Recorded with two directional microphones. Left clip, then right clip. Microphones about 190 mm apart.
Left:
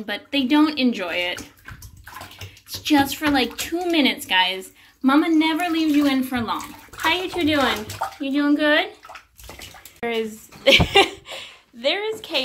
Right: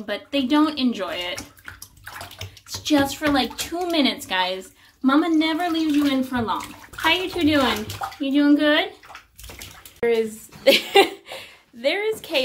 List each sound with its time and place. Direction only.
0.0 s speech: 10° right (ahead or behind)
2.7 s speech: 15° right (ahead or behind)
7.1 s speech: 20° right (ahead or behind)
9.9 s speech: 5° right (ahead or behind)